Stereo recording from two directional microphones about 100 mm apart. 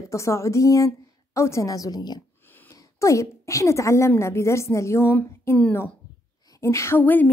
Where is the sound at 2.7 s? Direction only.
30° left (ahead or behind).